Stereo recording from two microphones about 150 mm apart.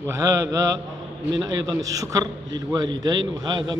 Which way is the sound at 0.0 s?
20° right (ahead or behind).